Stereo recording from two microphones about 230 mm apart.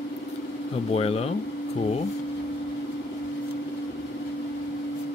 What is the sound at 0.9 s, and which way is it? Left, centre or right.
Speech, left.